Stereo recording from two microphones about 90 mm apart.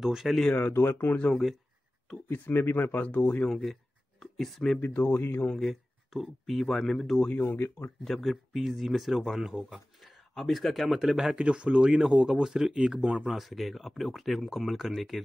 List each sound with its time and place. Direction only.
0.0 s speech: 5° right (ahead or behind)
0.5 s speech: 20° left (ahead or behind)
1.3 s speech: centre (ahead or behind)
2.2 s speech: 20° left (ahead or behind)
3.4 s speech: 5° left (ahead or behind)
4.7 s speech: 20° left (ahead or behind)
5.5 s speech: centre (ahead or behind)
7.2 s speech: 20° left (ahead or behind)
8.0 s speech: centre (ahead or behind)